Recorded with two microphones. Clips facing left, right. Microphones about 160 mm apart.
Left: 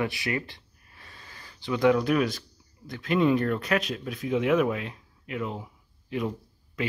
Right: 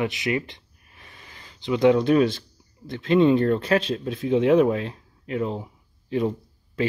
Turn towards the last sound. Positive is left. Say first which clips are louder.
# right 5 dB
turn(degrees=-30)  # may be behind; listen again after turning